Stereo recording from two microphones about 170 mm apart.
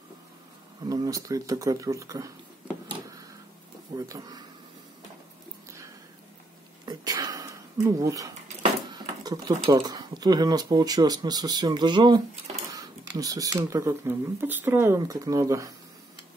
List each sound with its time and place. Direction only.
0.8 s speech: 20° right (ahead or behind)
3.9 s speech: 20° right (ahead or behind)
6.9 s a sound: 25° right (ahead or behind)
7.8 s speech: 20° right (ahead or behind)